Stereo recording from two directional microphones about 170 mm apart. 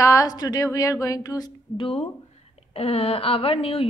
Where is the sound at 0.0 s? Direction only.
20° left (ahead or behind).